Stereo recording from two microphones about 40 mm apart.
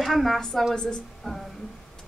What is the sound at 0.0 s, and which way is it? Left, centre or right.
Speech, centre.